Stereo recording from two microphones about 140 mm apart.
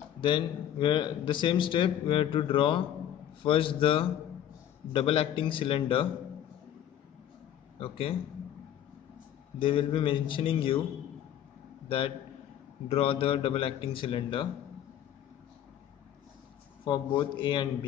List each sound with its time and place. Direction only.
0.2 s speech: 35° left (ahead or behind)
7.8 s speech: 40° left (ahead or behind)
9.6 s speech: 40° left (ahead or behind)
12.8 s a man's voice: 45° left (ahead or behind)
16.8 s speech: 30° left (ahead or behind)